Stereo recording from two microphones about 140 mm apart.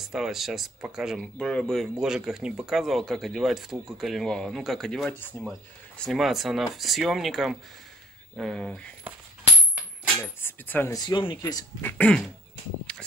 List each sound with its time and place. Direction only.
0.0 s speech: 5° right (ahead or behind)
10.4 s cutlery: 15° left (ahead or behind)
11.0 s speech: 35° left (ahead or behind)
11.8 s cutlery: 10° left (ahead or behind)